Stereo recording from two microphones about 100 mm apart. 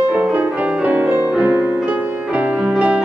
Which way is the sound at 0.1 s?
15° right (ahead or behind).